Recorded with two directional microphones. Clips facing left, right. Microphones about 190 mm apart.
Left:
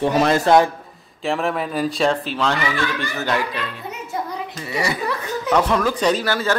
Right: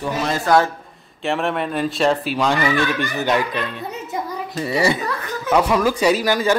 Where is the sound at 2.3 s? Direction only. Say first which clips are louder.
Right 3 dB; 15° right (ahead or behind).